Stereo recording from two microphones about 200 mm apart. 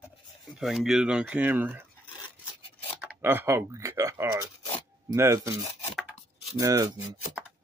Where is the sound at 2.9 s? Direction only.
10° right (ahead or behind).